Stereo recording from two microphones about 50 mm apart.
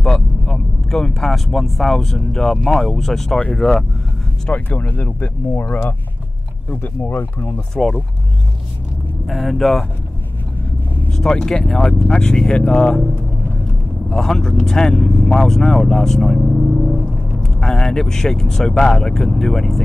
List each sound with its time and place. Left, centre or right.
0.0 s vehicle: centre
1.3 s speech: centre
4.5 s speech: left
9.2 s speech: centre
11.1 s speech: centre
14.0 s speech: centre
17.4 s speech: centre